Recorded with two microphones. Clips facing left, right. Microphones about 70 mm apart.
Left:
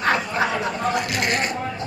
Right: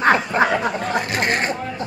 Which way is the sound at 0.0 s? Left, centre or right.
Right.